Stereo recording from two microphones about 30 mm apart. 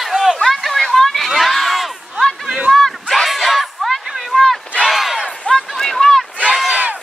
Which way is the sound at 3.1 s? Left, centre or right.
Centre.